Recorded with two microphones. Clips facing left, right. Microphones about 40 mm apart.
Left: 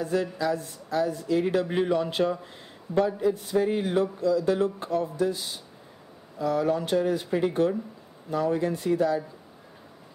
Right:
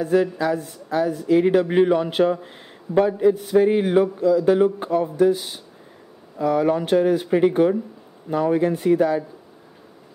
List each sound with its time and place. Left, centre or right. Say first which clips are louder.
0.0 s a man's voice: right 7 dB; right